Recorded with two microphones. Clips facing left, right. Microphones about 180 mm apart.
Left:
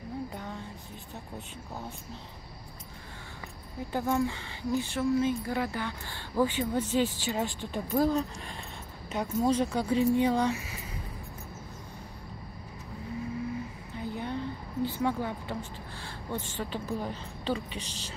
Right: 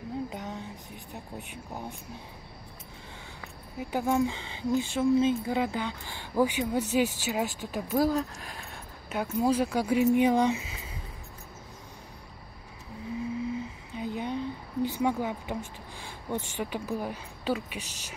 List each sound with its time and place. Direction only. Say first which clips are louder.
0.3 s a sound: right 2 dB; 20° right (ahead or behind)
1.7 s speech: right 2 dB; 15° right (ahead or behind)
3.9 s speech: right 2 dB; 15° right (ahead or behind)
13.9 s speech: right 2 dB; 15° right (ahead or behind)